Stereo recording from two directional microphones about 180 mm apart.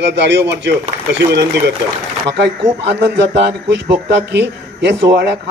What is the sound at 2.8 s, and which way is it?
A man's voice, 65° right (ahead or behind).